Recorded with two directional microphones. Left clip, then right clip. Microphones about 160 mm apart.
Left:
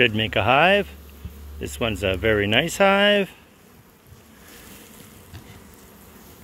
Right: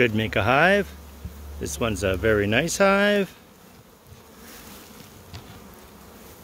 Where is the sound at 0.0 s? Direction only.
30° right (ahead or behind); by 3.3 s 10° right (ahead or behind).